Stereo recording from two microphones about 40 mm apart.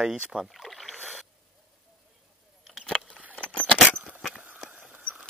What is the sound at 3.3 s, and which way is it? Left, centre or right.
Keys jangling, left.